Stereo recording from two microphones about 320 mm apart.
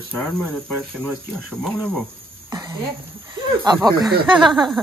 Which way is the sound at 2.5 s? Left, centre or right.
Centre.